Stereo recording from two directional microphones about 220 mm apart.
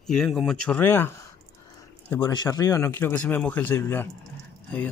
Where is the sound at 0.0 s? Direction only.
Centre (ahead or behind).